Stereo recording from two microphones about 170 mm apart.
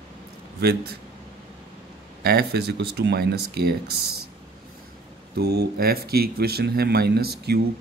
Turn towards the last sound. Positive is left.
turn(degrees=-70)  # may be behind; listen again after turning